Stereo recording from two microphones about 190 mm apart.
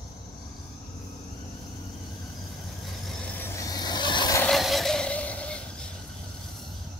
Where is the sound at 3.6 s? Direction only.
20° left (ahead or behind).